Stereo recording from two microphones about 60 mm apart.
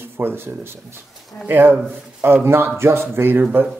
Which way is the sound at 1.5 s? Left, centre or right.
Right.